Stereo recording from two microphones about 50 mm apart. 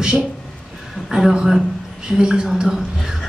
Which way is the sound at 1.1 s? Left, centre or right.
Centre.